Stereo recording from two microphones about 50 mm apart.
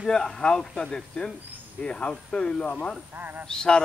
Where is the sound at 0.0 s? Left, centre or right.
Centre.